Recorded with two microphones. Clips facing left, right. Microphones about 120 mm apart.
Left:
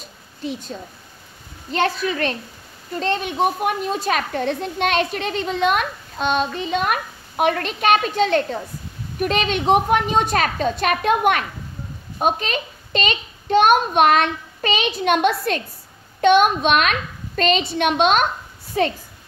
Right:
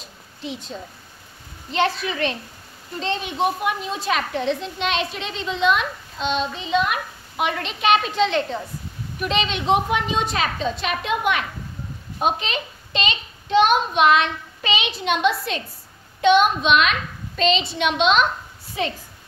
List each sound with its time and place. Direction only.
0.4 s a child's voice: 45° left (ahead or behind)